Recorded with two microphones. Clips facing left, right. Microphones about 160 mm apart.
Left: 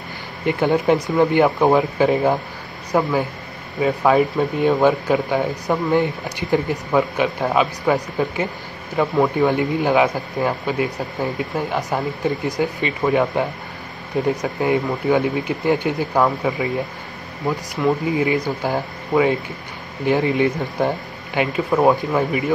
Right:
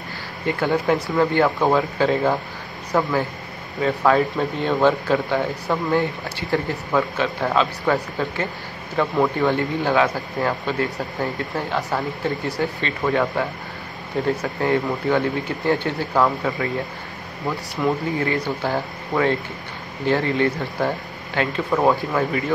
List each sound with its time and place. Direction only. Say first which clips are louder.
0.5 s speech: left 3 dB; 20° left (ahead or behind)
17.8 s speech: left 2 dB; centre (ahead or behind)
18.1 s speech: left 3 dB; 15° left (ahead or behind)